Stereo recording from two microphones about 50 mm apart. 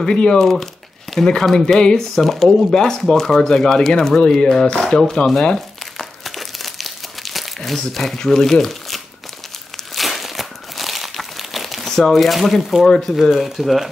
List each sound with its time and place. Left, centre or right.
0.0 s speech: centre
6.2 s crumpling: centre
7.9 s speech: centre
9.9 s crumpling: centre
12.1 s speech: centre
12.8 s speech: centre
13.1 s speech: centre